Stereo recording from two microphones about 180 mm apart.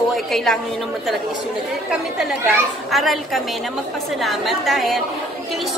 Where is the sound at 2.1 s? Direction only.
Centre (ahead or behind).